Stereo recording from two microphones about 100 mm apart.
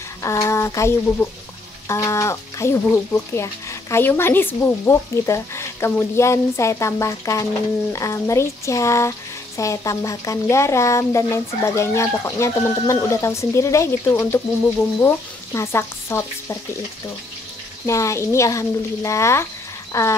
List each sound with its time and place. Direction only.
0.2 s speech: 30° left (ahead or behind)
17.8 s speech: 30° left (ahead or behind)
19.9 s a sound: 30° left (ahead or behind)